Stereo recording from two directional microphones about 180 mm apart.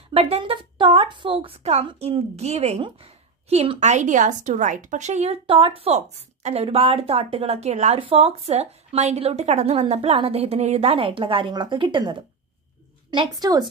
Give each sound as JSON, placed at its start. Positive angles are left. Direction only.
{"t": 0.1, "sound": "a woman's voice", "side_deg": -35}